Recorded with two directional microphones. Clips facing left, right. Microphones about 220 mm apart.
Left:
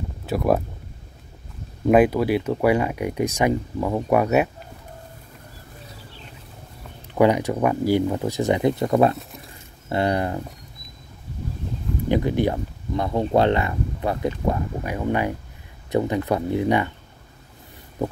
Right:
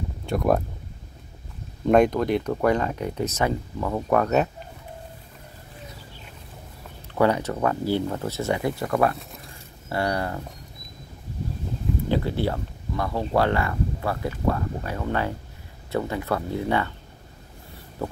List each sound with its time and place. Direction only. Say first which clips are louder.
0.3 s speech: left 1 dB; 5° left (ahead or behind)
1.9 s speech: left 2 dB; 5° left (ahead or behind)
7.2 s speech: left 3 dB; 15° left (ahead or behind)
12.1 s speech: left 5 dB; 15° left (ahead or behind)
18.0 s speech: left 4 dB; 20° left (ahead or behind)